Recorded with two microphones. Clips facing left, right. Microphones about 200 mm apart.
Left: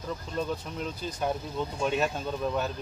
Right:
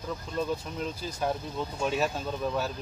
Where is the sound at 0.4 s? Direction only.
Centre (ahead or behind).